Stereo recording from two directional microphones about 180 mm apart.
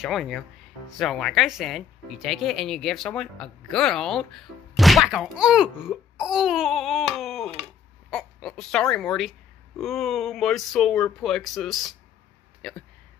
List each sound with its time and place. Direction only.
0.0 s speech: centre (ahead or behind)